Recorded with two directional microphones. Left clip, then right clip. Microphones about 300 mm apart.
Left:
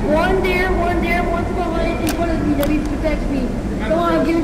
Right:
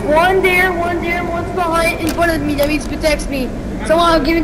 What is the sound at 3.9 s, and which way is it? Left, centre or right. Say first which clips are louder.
Speech: right 5 dB; right.